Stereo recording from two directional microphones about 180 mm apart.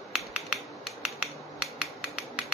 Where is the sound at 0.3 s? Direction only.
Centre (ahead or behind).